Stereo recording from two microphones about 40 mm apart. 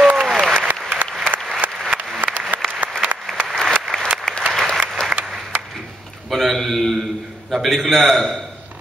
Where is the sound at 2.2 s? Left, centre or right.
Right.